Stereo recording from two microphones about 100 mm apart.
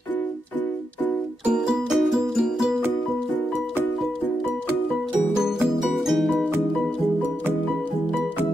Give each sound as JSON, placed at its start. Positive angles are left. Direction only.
{"t": 1.4, "sound": "music", "side_deg": -5}
{"t": 5.4, "sound": "music", "side_deg": -5}